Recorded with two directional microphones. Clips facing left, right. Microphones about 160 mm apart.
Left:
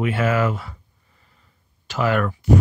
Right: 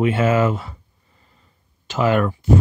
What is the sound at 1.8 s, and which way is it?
Speech, 20° right (ahead or behind).